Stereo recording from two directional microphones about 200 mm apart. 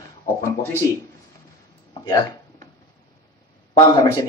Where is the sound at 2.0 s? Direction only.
20° left (ahead or behind).